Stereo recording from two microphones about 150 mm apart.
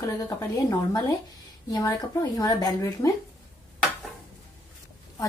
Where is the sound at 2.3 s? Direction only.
25° left (ahead or behind).